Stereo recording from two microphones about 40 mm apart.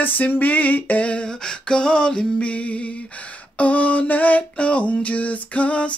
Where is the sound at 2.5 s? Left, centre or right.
Left.